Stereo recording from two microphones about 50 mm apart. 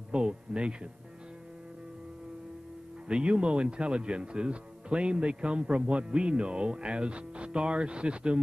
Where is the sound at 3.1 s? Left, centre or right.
Centre.